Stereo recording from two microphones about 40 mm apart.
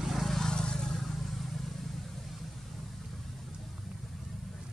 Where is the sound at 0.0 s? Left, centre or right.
Centre.